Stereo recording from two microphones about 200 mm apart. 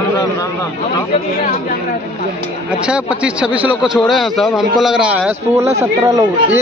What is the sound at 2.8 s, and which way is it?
A man's voice, 5° right (ahead or behind).